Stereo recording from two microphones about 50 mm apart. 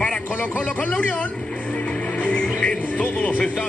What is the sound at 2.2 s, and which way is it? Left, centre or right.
Music, left.